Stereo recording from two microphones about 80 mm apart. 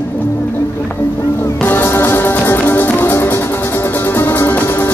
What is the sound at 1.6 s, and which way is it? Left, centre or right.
Music, left.